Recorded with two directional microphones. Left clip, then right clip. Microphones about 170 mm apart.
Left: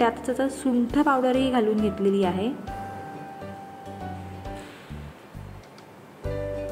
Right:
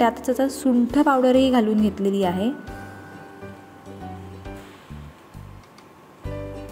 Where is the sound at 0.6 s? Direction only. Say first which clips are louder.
Right 4 dB; 40° right (ahead or behind).